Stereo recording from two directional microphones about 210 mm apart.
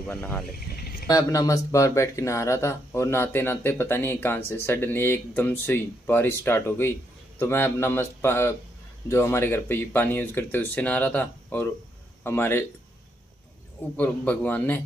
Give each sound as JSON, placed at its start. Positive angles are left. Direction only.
{"t": 0.0, "sound": "speech", "side_deg": 10}
{"t": 13.9, "sound": "speech", "side_deg": 10}